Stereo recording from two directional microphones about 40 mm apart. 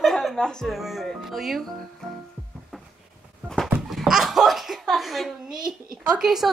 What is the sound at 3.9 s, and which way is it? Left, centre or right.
Laughter, centre.